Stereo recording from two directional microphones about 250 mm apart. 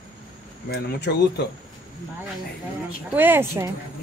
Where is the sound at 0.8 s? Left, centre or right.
Left.